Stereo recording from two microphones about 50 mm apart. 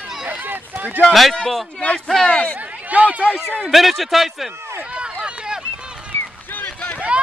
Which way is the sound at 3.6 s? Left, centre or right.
Centre.